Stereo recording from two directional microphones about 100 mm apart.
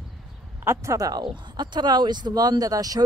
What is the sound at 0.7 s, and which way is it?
Speech, 35° right (ahead or behind).